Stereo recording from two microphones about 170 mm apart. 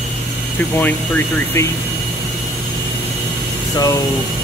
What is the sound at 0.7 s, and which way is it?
Speech, 10° left (ahead or behind).